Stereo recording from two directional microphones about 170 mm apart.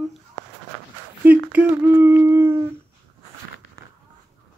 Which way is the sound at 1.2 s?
10° right (ahead or behind).